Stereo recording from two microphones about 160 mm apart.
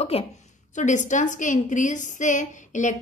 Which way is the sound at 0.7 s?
50° left (ahead or behind).